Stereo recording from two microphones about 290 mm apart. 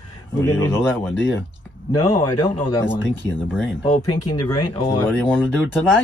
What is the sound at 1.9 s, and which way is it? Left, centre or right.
Speech, left.